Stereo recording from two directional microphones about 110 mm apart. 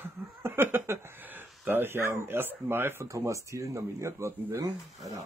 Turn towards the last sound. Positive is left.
turn(degrees=-30)  # may be behind; listen again after turning